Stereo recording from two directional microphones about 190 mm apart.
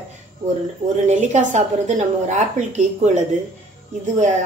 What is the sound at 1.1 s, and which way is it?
A woman's voice, 40° right (ahead or behind).